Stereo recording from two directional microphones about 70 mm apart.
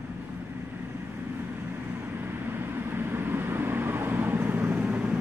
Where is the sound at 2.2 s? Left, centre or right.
Right.